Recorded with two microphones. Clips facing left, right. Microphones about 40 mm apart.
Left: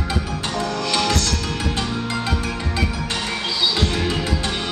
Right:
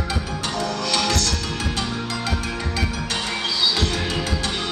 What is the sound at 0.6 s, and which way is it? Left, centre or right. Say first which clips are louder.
Music: left 2 dB; centre.